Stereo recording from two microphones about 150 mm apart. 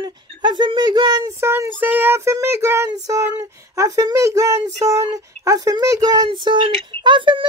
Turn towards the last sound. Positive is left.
turn(degrees=-35)  # may be behind; listen again after turning